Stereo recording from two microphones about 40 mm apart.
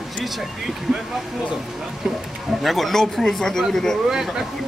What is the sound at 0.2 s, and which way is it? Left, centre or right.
Speech, centre.